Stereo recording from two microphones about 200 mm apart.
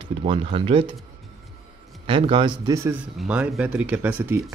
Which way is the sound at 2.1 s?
25° right (ahead or behind).